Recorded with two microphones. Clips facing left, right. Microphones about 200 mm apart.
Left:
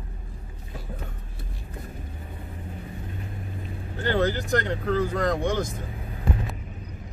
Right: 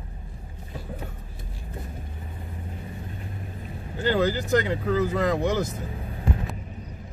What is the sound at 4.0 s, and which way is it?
Speech, 5° right (ahead or behind).